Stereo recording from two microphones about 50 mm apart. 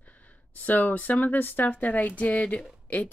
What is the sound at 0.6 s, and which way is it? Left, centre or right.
Speech, left.